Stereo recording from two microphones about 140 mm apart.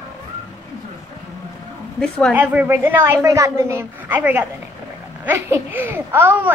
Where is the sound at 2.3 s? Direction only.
15° right (ahead or behind).